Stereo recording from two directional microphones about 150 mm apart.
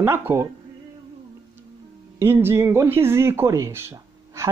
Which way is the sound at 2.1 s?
15° right (ahead or behind).